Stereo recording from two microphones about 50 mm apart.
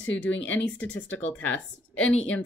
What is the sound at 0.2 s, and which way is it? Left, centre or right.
A woman's voice, left.